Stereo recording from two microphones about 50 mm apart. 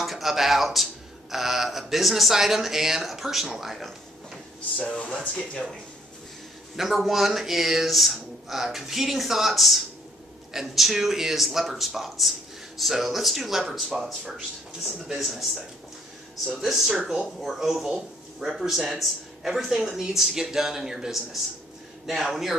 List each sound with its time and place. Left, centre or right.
0.0 s speech: centre
4.8 s speech: left
6.8 s speech: centre
16.6 s speech: centre
17.4 s speech: centre